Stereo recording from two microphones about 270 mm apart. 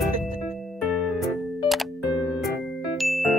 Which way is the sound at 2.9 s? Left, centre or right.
Centre.